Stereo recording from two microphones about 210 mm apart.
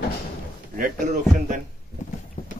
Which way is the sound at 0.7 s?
40° right (ahead or behind).